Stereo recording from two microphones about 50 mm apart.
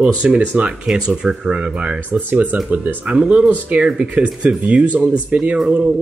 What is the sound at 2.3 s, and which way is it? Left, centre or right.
Speech, right.